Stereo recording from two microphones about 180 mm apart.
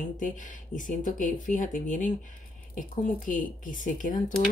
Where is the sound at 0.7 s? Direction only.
45° left (ahead or behind).